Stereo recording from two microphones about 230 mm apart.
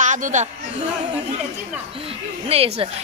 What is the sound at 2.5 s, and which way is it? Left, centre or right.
Speech, right.